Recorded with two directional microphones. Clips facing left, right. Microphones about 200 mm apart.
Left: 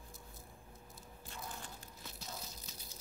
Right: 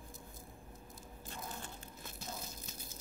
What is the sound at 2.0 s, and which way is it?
Crushing, 50° right (ahead or behind).